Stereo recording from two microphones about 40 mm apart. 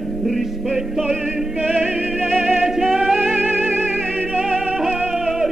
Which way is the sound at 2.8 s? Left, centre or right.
Centre.